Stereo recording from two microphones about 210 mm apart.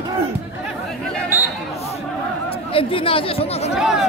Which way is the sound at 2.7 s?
25° left (ahead or behind).